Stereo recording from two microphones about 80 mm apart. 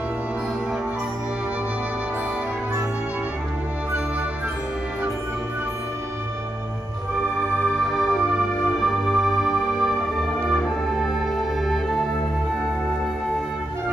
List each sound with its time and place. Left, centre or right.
7.8 s music: centre
11.0 s music: centre